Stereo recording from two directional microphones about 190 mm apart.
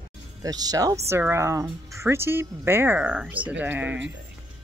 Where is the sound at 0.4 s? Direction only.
20° right (ahead or behind).